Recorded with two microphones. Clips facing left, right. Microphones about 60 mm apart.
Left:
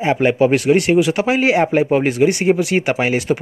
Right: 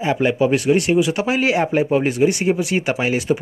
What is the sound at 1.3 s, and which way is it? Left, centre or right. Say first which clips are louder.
Speech: left 3 dB; left.